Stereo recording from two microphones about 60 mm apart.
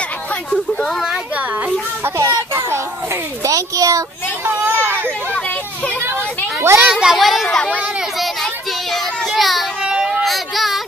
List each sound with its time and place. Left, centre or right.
2.0 s a child's voice: right
4.5 s hubbub: right
6.0 s children playing: right
6.8 s speech: centre
7.2 s speech: centre
7.4 s speech: centre
8.9 s child singing: centre
9.8 s a sound: centre
10.2 s child singing: centre